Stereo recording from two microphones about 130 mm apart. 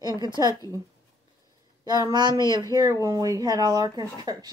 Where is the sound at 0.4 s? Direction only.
25° right (ahead or behind).